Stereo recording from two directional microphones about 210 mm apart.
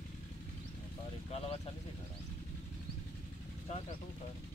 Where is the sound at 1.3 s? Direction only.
30° left (ahead or behind).